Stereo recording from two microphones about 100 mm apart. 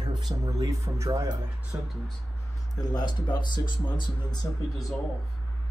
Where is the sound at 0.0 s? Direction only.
50° right (ahead or behind).